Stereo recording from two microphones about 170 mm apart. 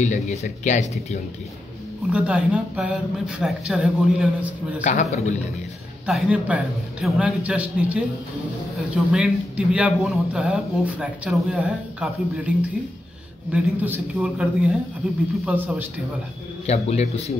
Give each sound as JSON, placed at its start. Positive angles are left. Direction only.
{"t": 0.0, "sound": "speech", "side_deg": 40}
{"t": 2.1, "sound": "a man's voice", "side_deg": -5}
{"t": 4.8, "sound": "speech", "side_deg": 45}
{"t": 6.0, "sound": "a man's voice", "side_deg": -5}
{"t": 13.5, "sound": "a woman's voice", "side_deg": -10}
{"t": 16.6, "sound": "a man's voice", "side_deg": 40}